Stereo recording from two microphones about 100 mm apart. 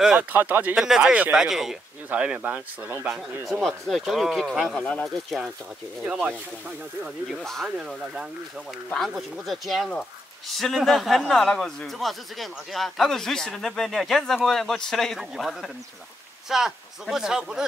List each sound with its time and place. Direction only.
0.0 s speech: 5° right (ahead or behind)
0.3 s speech: 15° right (ahead or behind)
0.8 s speech: 5° right (ahead or behind)
3.6 s speech: centre (ahead or behind)
4.6 s speech: 10° left (ahead or behind)
5.0 s speech: centre (ahead or behind)
7.2 s speech: centre (ahead or behind)